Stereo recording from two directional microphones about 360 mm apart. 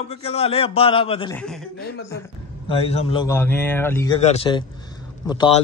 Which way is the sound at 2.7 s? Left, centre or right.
Centre.